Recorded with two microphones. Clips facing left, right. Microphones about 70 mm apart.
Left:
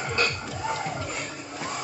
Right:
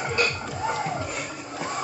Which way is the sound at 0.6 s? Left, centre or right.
Centre.